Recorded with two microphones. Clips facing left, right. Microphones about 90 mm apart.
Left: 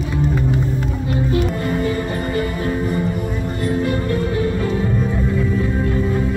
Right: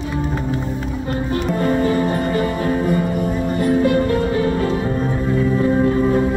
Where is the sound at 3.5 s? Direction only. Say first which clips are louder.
Right 5 dB; 10° right (ahead or behind).